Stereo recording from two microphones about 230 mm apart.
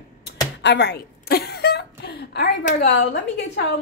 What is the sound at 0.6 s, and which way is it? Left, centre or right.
A woman's voice, left.